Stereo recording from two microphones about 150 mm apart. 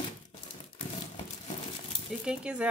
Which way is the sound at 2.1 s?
5° right (ahead or behind).